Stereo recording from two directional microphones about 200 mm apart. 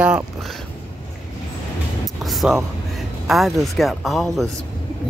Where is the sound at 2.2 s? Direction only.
Centre (ahead or behind).